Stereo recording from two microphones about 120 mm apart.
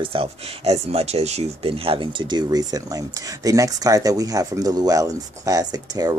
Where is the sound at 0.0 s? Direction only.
50° right (ahead or behind).